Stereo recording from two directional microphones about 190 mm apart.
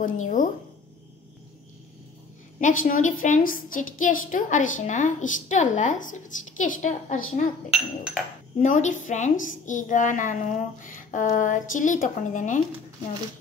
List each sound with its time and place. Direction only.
0.0 s a woman's voice: 45° left (ahead or behind)
2.8 s a woman's voice: 45° left (ahead or behind)
7.7 s speech: 5° right (ahead or behind)
8.6 s a woman's voice: 40° left (ahead or behind)